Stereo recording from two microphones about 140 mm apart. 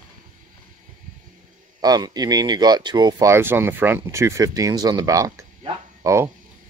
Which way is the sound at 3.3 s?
15° right (ahead or behind).